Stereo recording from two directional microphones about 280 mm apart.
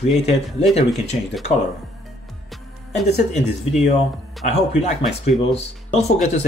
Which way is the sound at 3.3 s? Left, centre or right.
Left.